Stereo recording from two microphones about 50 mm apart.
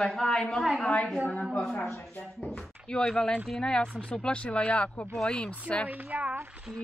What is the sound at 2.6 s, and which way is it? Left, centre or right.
Speech, centre.